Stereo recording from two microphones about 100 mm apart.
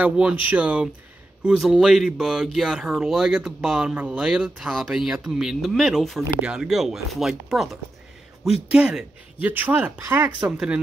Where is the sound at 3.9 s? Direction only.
15° right (ahead or behind); by 7.7 s centre (ahead or behind).